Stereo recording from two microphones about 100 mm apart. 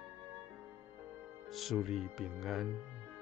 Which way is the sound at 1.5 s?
Centre (ahead or behind).